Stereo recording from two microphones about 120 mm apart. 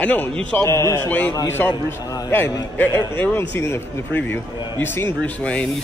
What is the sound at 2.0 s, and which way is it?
Speech, 30° left (ahead or behind).